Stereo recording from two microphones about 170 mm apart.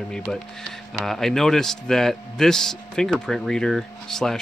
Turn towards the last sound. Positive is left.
turn(degrees=0)  # may be behind; listen again after turning